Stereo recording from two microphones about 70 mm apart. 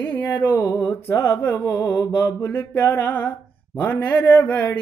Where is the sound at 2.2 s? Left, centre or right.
Left.